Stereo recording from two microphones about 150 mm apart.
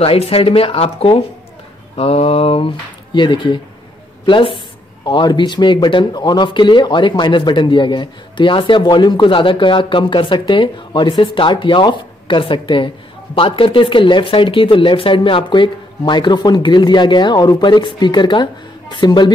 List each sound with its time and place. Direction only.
0.0 s speech: 40° left (ahead or behind)